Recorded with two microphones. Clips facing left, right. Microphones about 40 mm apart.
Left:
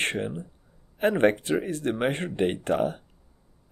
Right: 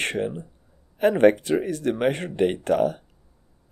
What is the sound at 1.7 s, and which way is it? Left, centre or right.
Speech, left.